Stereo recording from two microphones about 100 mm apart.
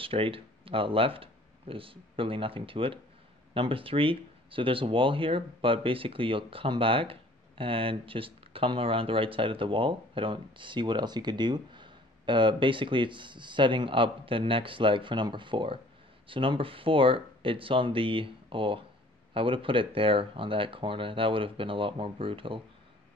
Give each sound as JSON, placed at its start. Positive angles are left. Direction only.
{"t": 0.0, "sound": "speech", "side_deg": -65}